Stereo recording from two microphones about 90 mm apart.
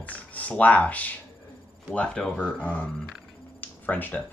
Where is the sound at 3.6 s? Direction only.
20° left (ahead or behind).